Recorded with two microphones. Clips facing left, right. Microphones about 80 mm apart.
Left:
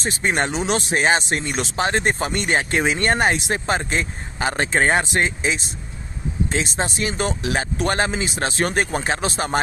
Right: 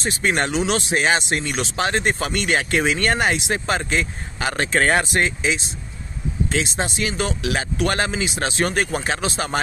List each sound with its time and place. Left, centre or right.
0.0 s speech: left